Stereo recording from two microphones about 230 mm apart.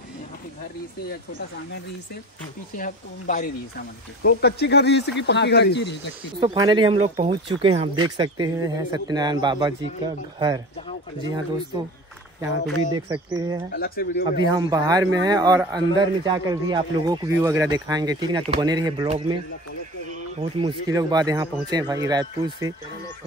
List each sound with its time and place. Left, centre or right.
2.8 s speech: left
6.4 s speech: centre
13.1 s a man's voice: centre
13.7 s speech: left
14.5 s a man's voice: centre
20.3 s a man's voice: right